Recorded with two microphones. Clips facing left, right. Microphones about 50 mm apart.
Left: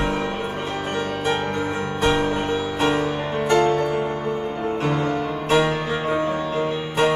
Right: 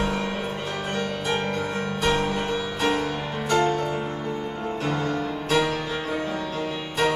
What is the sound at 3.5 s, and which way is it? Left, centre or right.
Music, left.